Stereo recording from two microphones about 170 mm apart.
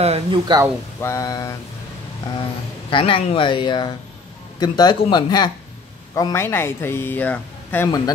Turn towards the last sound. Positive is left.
turn(degrees=10)  # may be behind; listen again after turning